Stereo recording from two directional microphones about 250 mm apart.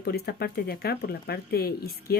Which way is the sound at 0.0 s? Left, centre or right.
Left.